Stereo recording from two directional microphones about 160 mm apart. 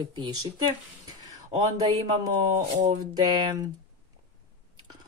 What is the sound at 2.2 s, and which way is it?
Speech, 25° right (ahead or behind).